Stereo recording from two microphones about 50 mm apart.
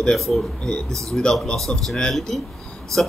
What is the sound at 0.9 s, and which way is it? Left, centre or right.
Speech, right.